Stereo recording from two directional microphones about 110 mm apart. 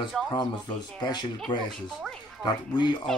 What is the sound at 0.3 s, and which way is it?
Speech, 40° left (ahead or behind).